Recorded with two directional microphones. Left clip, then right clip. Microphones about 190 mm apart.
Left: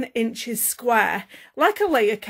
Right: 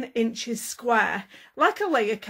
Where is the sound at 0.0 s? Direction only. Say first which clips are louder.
Left 2 dB; 40° left (ahead or behind).